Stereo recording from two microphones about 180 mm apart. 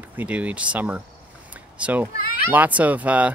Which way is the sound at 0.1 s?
10° right (ahead or behind).